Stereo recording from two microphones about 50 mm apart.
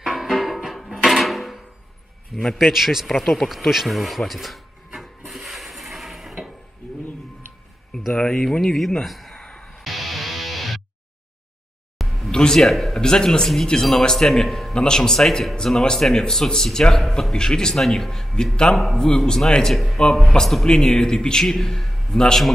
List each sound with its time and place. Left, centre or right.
0.0 s music: centre
1.0 s a sound: centre
2.4 s speech: centre
2.7 s speech: centre
3.1 s a sound: centre
8.1 s speech: centre
8.7 s speech: centre
9.4 s music: left
9.8 s music: centre
12.0 s a sound: centre
12.3 s speech: centre
13.0 s speech: centre